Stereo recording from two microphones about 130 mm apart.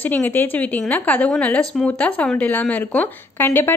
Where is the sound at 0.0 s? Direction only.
15° left (ahead or behind).